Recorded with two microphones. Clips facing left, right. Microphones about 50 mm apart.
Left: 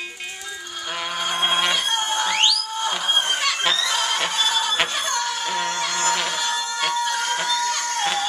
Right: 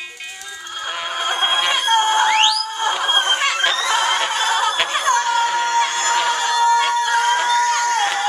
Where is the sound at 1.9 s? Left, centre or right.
Right.